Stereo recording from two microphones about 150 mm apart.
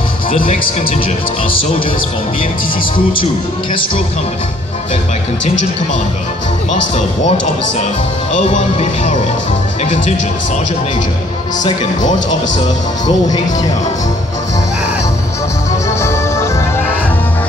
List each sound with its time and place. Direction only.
0.3 s speech: 40° left (ahead or behind)
6.7 s speech: 55° left (ahead or behind)
8.7 s music: 50° left (ahead or behind)
16.0 s music: 20° left (ahead or behind)